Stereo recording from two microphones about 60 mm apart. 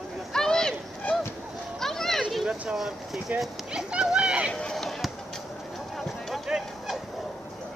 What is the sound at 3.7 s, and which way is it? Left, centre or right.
Horse, centre.